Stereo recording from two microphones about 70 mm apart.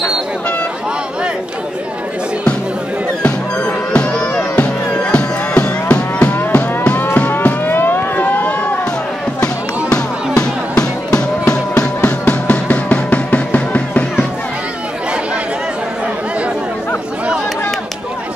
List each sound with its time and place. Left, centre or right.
3.2 s music: centre
9.8 s music: centre